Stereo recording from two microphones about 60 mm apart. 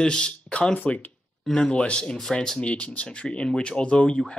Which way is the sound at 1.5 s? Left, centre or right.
Centre.